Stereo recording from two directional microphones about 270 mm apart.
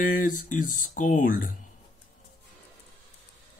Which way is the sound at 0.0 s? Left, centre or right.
Left.